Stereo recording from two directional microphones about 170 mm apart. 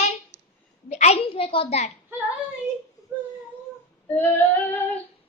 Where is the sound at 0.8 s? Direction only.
40° left (ahead or behind).